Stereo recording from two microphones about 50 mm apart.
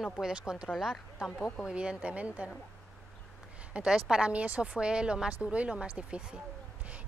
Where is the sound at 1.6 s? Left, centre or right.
Centre.